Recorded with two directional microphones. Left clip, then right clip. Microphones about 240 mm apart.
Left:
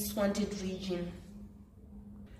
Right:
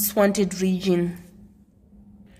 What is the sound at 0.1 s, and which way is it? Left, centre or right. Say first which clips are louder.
Speech: right 13 dB; right.